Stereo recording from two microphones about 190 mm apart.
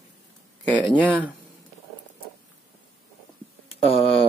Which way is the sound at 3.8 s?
30° left (ahead or behind).